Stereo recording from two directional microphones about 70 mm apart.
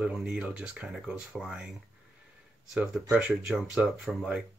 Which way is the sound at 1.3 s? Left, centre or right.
Centre.